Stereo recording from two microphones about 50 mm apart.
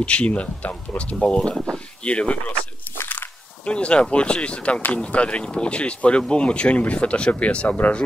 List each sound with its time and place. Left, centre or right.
0.0 s speech: left
3.0 s a sound: left
3.6 s speech: left